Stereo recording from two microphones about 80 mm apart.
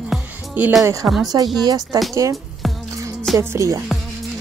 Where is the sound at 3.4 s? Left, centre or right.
Right.